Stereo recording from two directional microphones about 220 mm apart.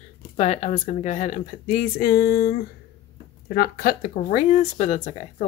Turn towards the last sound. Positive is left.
turn(degrees=30)  # may be behind; listen again after turning